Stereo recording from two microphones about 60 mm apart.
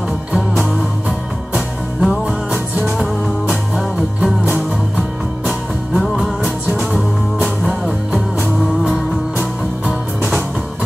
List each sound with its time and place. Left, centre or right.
1.5 s music: centre
5.9 s music: centre
7.4 s music: centre